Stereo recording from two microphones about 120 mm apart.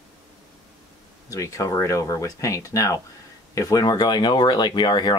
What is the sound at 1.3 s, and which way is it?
Speech, 25° left (ahead or behind).